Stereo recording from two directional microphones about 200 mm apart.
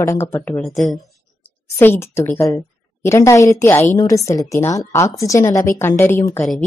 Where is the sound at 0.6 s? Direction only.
Centre (ahead or behind).